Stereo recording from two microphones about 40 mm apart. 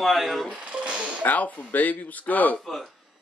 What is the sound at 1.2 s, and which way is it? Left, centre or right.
Speech, left.